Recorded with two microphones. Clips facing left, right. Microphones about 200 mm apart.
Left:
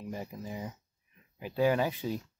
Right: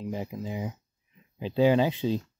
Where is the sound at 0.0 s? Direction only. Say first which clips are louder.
Right 6 dB; 20° right (ahead or behind).